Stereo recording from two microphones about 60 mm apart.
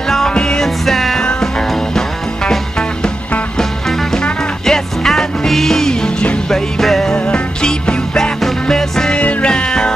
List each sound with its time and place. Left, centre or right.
0.1 s music: centre
4.1 s music: centre
7.2 s music: centre